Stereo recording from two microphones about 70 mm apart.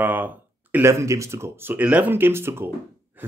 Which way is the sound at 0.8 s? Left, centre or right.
Right.